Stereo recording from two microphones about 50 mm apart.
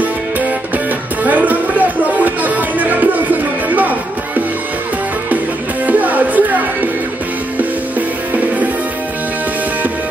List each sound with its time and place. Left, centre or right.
1.2 s music: right
5.9 s music: right